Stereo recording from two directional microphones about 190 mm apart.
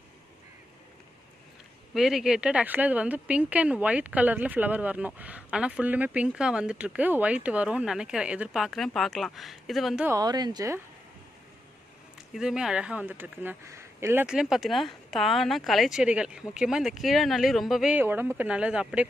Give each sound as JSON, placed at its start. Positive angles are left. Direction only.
{"t": 2.0, "sound": "speech", "side_deg": 0}
{"t": 10.0, "sound": "speech", "side_deg": -20}
{"t": 12.4, "sound": "speech", "side_deg": -5}